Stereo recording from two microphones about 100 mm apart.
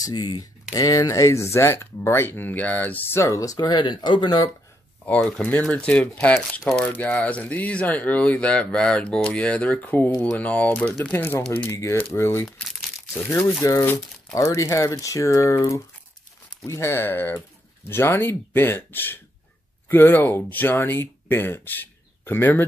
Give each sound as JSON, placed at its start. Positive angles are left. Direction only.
{"t": 0.0, "sound": "speech", "side_deg": 45}
{"t": 3.2, "sound": "speech", "side_deg": 30}
{"t": 5.0, "sound": "speech", "side_deg": 15}
{"t": 6.9, "sound": "speech", "side_deg": 15}